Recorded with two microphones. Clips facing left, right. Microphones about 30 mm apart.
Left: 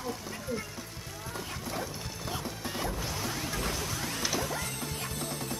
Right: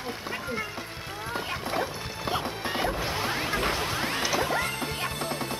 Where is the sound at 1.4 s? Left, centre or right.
Right.